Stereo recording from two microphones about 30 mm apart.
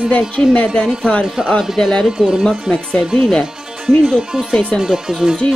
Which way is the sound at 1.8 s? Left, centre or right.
Centre.